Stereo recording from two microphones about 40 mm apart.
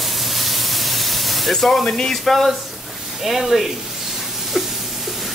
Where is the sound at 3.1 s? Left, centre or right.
Centre.